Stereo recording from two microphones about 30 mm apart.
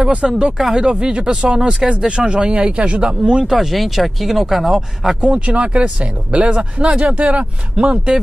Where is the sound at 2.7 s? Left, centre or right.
Right.